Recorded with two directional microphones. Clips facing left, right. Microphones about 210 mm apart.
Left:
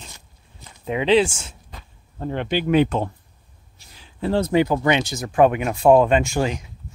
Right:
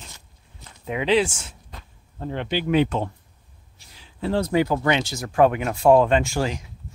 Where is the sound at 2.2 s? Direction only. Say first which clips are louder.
Left 3 dB; 50° left (ahead or behind).